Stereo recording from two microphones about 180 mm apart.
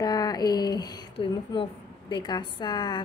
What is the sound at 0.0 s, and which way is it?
A woman's voice, 20° left (ahead or behind).